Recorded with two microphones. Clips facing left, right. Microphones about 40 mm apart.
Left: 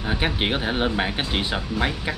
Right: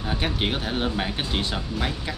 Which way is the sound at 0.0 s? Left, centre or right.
Centre.